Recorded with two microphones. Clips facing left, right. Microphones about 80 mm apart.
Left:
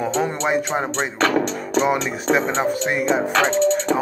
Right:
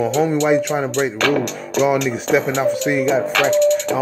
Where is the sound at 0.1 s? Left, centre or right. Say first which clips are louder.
Right 5 dB; left.